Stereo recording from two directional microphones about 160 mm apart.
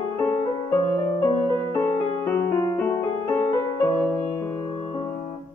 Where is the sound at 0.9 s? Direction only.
20° left (ahead or behind).